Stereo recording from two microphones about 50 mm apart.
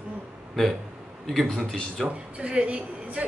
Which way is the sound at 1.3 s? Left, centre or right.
Centre.